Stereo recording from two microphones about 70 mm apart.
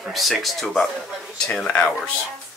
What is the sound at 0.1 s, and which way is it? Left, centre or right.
Speech, centre.